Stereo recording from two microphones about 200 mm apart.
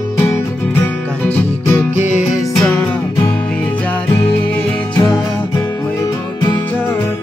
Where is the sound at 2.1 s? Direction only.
5° right (ahead or behind).